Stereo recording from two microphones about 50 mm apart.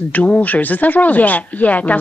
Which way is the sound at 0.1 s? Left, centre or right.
Left.